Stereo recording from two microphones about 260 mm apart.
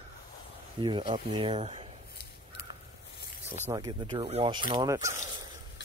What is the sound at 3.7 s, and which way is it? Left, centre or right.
Speech, centre.